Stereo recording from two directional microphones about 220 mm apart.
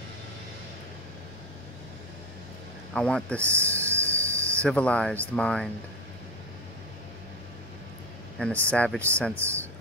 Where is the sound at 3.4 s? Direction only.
10° right (ahead or behind).